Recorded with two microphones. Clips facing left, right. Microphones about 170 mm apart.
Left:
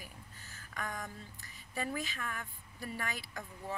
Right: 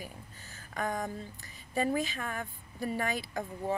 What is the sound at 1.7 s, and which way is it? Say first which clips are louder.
Speech: right 8 dB; 25° right (ahead or behind).